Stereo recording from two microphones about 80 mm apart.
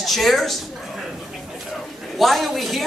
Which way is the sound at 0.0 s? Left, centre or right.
Centre.